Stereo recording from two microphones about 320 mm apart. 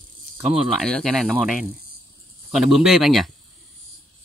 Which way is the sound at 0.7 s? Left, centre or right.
Centre.